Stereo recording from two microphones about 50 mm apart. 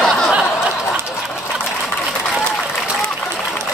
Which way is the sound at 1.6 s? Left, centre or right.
Centre.